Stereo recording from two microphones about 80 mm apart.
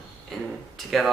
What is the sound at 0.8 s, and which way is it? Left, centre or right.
Speech, centre.